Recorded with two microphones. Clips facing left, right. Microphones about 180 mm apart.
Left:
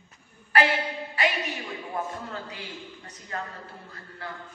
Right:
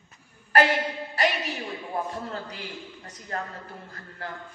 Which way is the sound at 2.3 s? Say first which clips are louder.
Right 2 dB; 40° right (ahead or behind).